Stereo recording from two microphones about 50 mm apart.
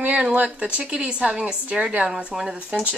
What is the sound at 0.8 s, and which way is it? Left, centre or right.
A woman's voice, centre.